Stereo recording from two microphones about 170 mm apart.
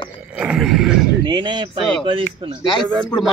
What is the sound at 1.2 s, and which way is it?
Speech, 25° right (ahead or behind).